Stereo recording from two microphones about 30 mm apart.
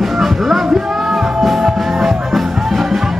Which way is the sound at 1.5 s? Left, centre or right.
Centre.